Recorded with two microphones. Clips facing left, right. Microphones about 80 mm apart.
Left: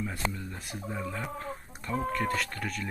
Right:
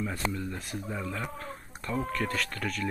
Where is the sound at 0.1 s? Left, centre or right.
Left.